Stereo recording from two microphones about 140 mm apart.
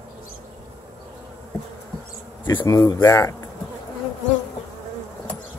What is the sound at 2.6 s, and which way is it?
Speech, 25° left (ahead or behind).